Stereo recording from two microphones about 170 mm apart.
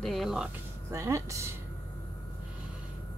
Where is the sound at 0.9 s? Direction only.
15° right (ahead or behind).